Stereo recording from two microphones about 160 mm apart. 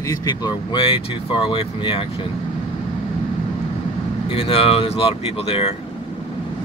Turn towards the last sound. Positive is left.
turn(degrees=35)  # may be behind; listen again after turning